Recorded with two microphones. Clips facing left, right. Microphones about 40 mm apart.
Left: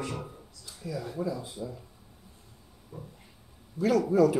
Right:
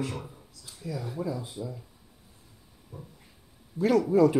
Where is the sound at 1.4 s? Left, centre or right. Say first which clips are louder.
Right 1 dB; right.